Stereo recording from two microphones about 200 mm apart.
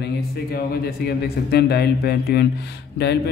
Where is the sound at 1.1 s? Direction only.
55° left (ahead or behind).